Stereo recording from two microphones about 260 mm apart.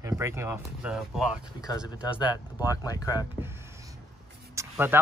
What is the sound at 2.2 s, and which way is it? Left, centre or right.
Speech, centre.